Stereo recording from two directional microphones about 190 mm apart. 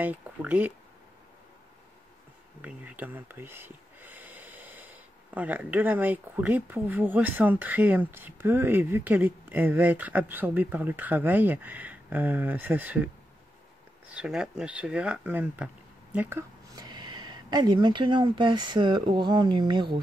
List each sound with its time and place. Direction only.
0.0 s speech: 10° right (ahead or behind)
2.6 s speech: 5° right (ahead or behind); by 20.0 s 25° right (ahead or behind)